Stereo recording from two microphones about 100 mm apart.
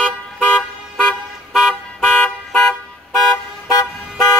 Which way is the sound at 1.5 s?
Centre (ahead or behind).